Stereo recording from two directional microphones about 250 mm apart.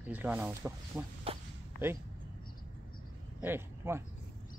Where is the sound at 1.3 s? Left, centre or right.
Right.